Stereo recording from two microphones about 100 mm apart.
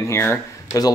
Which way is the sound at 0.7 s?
35° left (ahead or behind).